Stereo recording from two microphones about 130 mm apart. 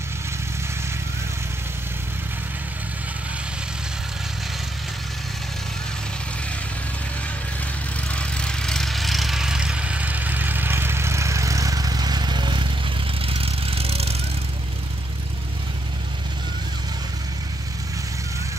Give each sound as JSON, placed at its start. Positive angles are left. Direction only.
{"t": 8.1, "sound": "vehicle", "side_deg": 10}
{"t": 13.2, "sound": "vehicle", "side_deg": -45}